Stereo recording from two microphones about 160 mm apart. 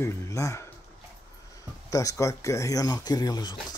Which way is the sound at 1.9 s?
20° left (ahead or behind).